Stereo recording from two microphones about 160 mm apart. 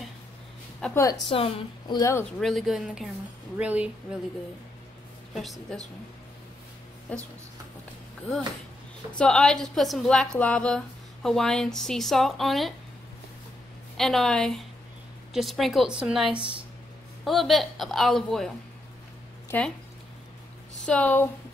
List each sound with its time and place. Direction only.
0.8 s a woman's voice: 5° left (ahead or behind)
1.3 s a woman's voice: 35° left (ahead or behind)
2.0 s speech: 20° left (ahead or behind)
2.4 s a woman's voice: centre (ahead or behind)
5.3 s a woman's voice: centre (ahead or behind)
7.1 s speech: 10° left (ahead or behind)
9.2 s a woman's voice: 5° left (ahead or behind)
13.9 s a woman's voice: centre (ahead or behind)
20.8 s speech: 5° left (ahead or behind)